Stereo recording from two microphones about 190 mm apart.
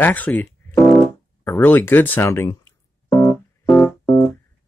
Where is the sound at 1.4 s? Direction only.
10° left (ahead or behind).